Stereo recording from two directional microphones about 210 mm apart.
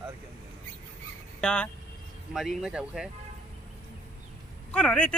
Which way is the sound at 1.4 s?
5° left (ahead or behind).